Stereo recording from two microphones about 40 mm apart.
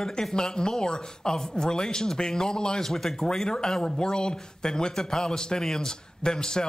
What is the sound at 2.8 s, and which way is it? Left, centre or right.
Speech, centre.